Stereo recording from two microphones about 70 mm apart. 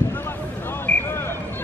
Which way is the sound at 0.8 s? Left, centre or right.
Left.